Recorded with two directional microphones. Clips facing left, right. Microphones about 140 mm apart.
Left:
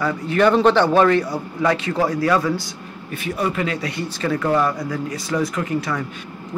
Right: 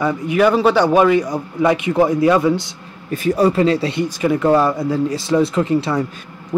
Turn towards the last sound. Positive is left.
turn(degrees=-30)  # may be behind; listen again after turning